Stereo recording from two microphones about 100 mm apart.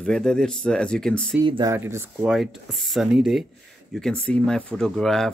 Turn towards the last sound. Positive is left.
turn(degrees=5)  # may be behind; listen again after turning